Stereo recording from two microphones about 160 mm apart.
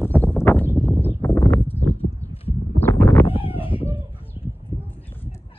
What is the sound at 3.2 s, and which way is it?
Cat, 35° left (ahead or behind).